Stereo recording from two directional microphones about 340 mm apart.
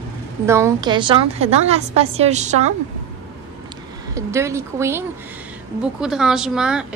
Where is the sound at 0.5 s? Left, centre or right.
Centre.